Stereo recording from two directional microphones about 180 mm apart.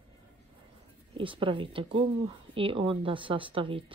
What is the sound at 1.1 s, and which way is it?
Speech, 30° right (ahead or behind).